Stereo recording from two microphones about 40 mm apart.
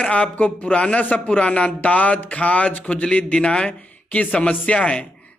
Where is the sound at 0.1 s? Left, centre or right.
Left.